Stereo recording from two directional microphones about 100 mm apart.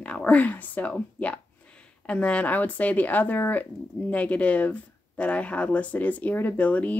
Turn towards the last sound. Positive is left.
turn(degrees=15)  # may be behind; listen again after turning